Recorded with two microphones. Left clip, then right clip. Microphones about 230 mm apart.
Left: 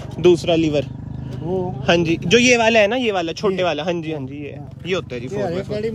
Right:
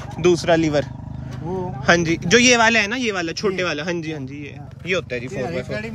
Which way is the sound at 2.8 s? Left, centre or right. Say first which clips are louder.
Left 5 dB; centre.